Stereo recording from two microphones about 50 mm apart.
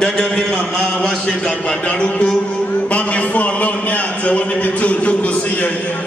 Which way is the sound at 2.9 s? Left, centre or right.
Left.